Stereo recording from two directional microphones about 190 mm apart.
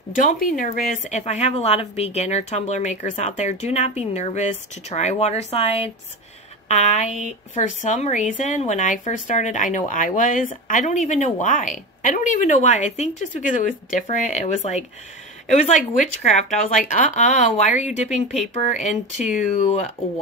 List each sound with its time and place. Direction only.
0.1 s speech: 45° left (ahead or behind)